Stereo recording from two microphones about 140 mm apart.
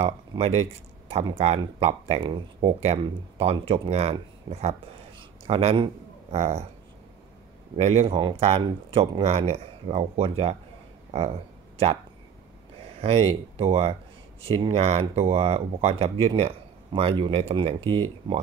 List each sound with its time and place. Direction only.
0.0 s speech: 50° right (ahead or behind)
2.1 s speech: 35° right (ahead or behind); by 6.7 s 55° right (ahead or behind)
7.7 s speech: 50° right (ahead or behind)
8.6 s speech: 35° right (ahead or behind)
13.0 s speech: 45° right (ahead or behind)